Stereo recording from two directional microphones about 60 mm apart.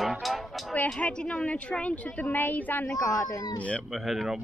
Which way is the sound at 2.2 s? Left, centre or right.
Left.